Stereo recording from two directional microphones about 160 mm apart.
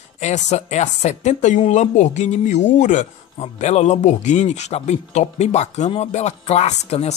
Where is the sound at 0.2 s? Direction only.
45° left (ahead or behind).